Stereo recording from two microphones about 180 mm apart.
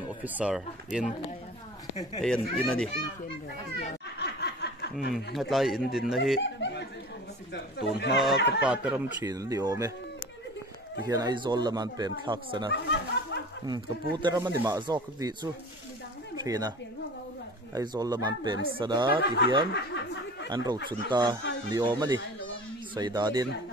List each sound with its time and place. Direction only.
0.2 s speech: 5° right (ahead or behind)
2.2 s speech: 5° left (ahead or behind)
4.2 s snicker: 65° left (ahead or behind)
5.1 s speech: centre (ahead or behind)
6.4 s chuckle: 75° left (ahead or behind)
7.5 s speech: 70° left (ahead or behind)
8.6 s speech: 5° right (ahead or behind)
9.2 s speech: 20° right (ahead or behind)
11.1 s speech: 20° right (ahead or behind)
12.7 s snicker: 70° left (ahead or behind)
13.7 s speech: 25° right (ahead or behind)
17.7 s speech: 20° right (ahead or behind)
19.7 s snicker: 75° left (ahead or behind)
20.4 s speech: 25° right (ahead or behind)